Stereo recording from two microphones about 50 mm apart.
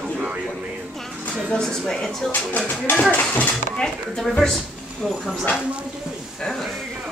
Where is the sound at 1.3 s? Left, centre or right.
Centre.